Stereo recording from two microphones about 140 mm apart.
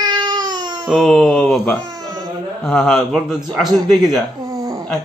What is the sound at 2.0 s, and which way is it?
Baby cry, 25° right (ahead or behind).